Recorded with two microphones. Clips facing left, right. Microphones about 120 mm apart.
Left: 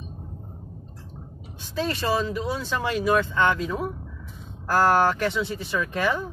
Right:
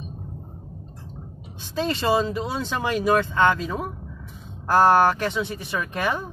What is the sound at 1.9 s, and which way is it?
Speech, 20° right (ahead or behind).